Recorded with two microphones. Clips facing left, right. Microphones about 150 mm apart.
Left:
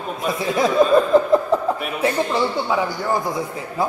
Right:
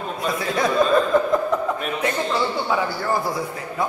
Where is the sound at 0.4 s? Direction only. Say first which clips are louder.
Left 4 dB; 25° left (ahead or behind).